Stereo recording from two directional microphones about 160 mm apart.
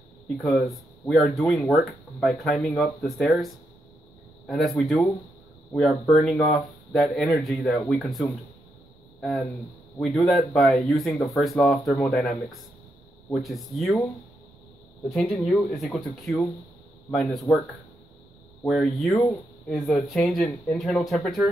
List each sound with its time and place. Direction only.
0.5 s speech: centre (ahead or behind)
15.0 s speech: centre (ahead or behind)
18.7 s speech: centre (ahead or behind)
19.1 s speech: 20° left (ahead or behind)
19.7 s speech: centre (ahead or behind)